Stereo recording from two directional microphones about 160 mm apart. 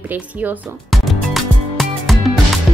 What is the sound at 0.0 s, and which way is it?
Speech, 10° right (ahead or behind).